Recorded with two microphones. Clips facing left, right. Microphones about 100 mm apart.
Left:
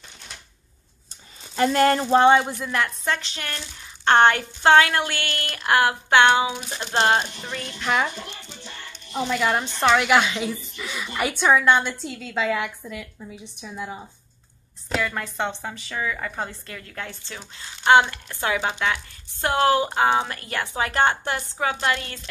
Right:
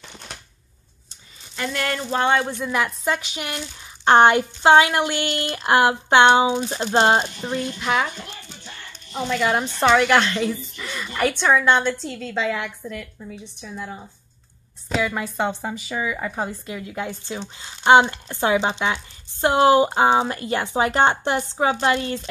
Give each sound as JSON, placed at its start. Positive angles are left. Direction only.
{"t": 1.6, "sound": "speech", "side_deg": 35}
{"t": 2.3, "sound": "speech", "side_deg": 10}
{"t": 2.6, "sound": "speech", "side_deg": -5}
{"t": 7.8, "sound": "a woman's voice", "side_deg": 0}
{"t": 9.1, "sound": "a woman's voice", "side_deg": 5}
{"t": 14.9, "sound": "speech", "side_deg": -5}